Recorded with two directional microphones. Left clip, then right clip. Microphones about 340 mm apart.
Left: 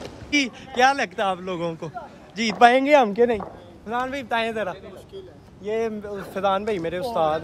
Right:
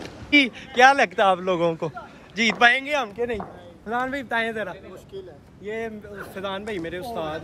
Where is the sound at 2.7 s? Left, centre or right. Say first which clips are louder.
Left 6 dB; left.